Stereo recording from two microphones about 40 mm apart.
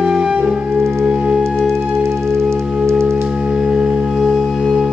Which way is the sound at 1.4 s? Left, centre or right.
Centre.